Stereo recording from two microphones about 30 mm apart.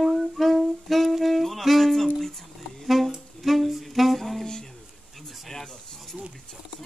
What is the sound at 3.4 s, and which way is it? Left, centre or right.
Saxophone, centre.